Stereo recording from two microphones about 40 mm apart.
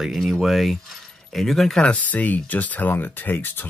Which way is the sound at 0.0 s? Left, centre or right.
Centre.